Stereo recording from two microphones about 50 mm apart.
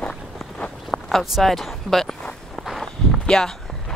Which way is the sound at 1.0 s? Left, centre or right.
Centre.